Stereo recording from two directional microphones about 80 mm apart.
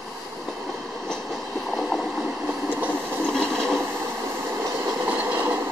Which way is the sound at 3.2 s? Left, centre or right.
Centre.